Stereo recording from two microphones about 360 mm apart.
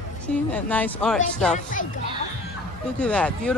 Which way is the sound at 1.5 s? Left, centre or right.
Left.